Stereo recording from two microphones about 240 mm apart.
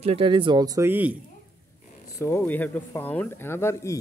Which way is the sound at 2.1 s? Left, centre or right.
Centre.